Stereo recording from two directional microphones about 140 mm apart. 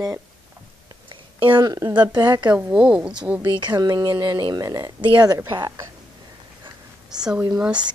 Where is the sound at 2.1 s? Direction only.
30° right (ahead or behind).